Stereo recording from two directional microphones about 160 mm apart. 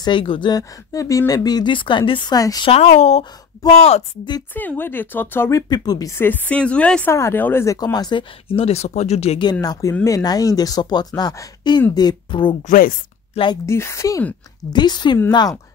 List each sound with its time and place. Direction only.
0.0 s speech: 30° left (ahead or behind)
2.7 s speech: 45° left (ahead or behind)
4.6 s speech: 10° left (ahead or behind); by 9.4 s 40° left (ahead or behind)
9.4 s speech: 25° left (ahead or behind)
12.6 s speech: 60° left (ahead or behind)
13.3 s speech: 35° left (ahead or behind)
13.7 s speech: 15° left (ahead or behind)